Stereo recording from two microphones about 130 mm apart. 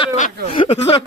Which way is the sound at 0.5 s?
50° left (ahead or behind).